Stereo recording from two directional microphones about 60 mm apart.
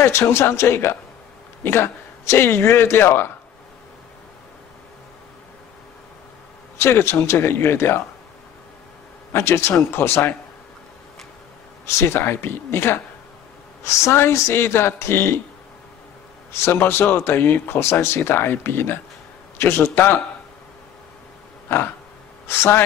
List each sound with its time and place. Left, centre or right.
0.0 s a man's voice: left
6.8 s a man's voice: left
9.3 s a man's voice: left
11.8 s a man's voice: left
13.8 s a man's voice: left
16.5 s speech: left
22.5 s a man's voice: left